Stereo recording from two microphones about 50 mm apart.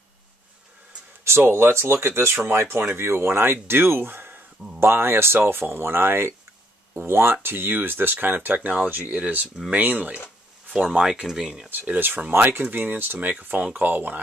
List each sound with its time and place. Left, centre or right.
1.2 s speech: right
4.7 s speech: right
10.7 s speech: centre
11.7 s speech: right